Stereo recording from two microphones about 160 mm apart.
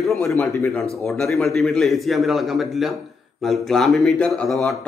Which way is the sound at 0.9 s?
Centre (ahead or behind).